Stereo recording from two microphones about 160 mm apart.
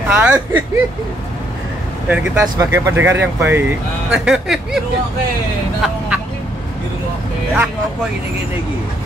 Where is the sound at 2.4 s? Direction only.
20° right (ahead or behind); by 4.8 s centre (ahead or behind).